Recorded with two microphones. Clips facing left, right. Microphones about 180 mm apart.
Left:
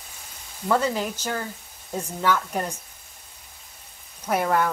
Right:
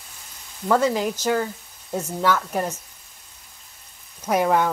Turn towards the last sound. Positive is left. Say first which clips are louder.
# right 3 dB
turn(degrees=-10)  # may be behind; listen again after turning